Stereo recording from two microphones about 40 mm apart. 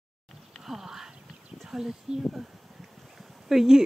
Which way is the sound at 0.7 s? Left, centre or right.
Centre.